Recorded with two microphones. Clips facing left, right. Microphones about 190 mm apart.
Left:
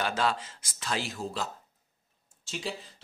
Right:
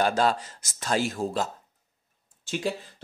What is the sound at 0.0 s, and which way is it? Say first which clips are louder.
Speech: right 6 dB; 40° right (ahead or behind).